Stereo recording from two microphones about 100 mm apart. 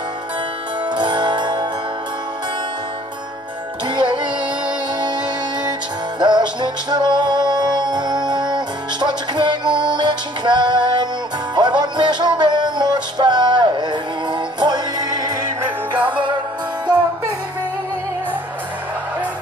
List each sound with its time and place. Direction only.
0.8 s music: 50° right (ahead or behind)
3.8 s music: 50° right (ahead or behind)